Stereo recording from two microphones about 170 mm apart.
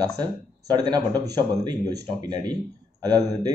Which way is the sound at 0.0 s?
20° right (ahead or behind).